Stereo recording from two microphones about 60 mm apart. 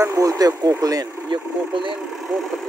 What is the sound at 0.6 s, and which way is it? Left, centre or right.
Speech, right.